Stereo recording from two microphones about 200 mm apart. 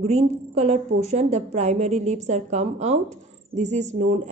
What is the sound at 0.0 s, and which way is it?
A woman's voice, 30° right (ahead or behind).